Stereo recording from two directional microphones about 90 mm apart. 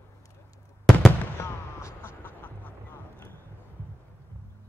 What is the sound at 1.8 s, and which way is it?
Vehicle, 25° left (ahead or behind).